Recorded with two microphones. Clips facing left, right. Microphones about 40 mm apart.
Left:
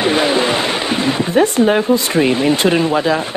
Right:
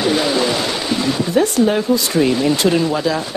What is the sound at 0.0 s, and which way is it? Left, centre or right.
Speech, left.